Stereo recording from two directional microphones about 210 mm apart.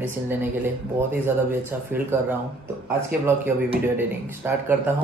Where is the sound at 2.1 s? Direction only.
10° right (ahead or behind).